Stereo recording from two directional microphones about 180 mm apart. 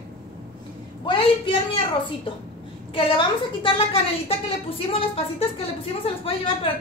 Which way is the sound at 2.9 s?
30° left (ahead or behind).